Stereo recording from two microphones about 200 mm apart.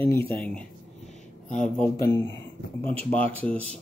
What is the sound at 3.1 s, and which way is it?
Speech, 5° left (ahead or behind).